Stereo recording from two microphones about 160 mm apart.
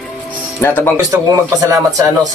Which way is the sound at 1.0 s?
20° right (ahead or behind).